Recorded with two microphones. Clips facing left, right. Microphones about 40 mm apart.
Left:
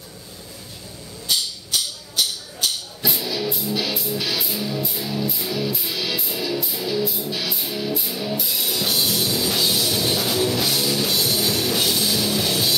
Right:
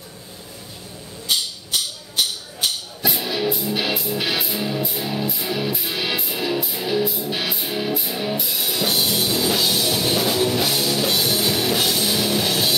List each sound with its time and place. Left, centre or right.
3.2 s music: right
8.4 s music: centre